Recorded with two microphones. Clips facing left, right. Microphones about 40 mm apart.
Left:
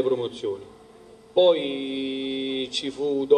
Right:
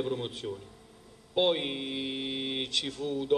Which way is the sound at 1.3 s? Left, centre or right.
Centre.